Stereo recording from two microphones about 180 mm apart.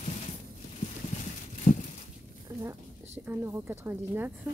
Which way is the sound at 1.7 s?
35° left (ahead or behind).